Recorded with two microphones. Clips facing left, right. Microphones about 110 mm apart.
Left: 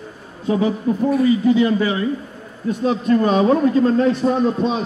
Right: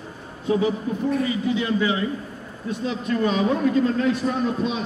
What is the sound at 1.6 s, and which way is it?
A man's voice, 50° left (ahead or behind).